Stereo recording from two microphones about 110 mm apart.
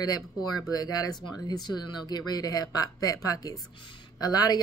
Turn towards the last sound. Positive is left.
turn(degrees=35)  # may be behind; listen again after turning